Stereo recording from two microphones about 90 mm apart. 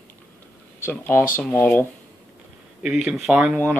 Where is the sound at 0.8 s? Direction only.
25° left (ahead or behind).